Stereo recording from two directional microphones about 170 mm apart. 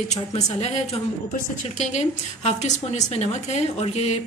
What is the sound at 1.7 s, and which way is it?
Speech, 45° left (ahead or behind).